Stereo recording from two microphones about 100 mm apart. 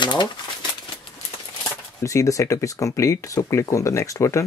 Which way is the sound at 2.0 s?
35° left (ahead or behind).